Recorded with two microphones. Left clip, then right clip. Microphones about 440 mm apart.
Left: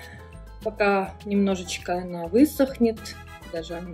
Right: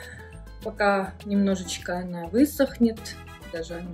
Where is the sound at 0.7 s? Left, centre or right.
Centre.